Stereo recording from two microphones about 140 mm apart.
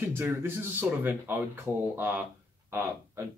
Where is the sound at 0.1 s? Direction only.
15° right (ahead or behind).